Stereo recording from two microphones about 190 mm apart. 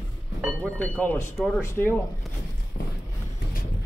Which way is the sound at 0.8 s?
10° left (ahead or behind).